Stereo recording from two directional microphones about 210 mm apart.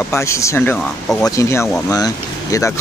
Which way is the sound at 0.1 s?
15° left (ahead or behind).